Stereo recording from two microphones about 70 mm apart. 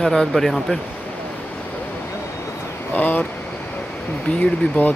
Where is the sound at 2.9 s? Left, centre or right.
Left.